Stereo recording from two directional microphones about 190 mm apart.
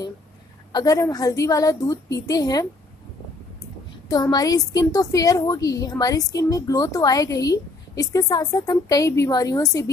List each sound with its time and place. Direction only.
0.7 s a woman's voice: 15° left (ahead or behind)
4.1 s a woman's voice: 20° left (ahead or behind)